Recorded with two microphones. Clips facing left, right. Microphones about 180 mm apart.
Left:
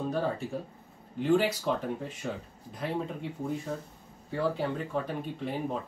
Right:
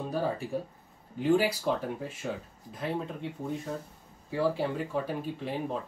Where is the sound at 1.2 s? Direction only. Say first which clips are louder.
Even; 5° right (ahead or behind).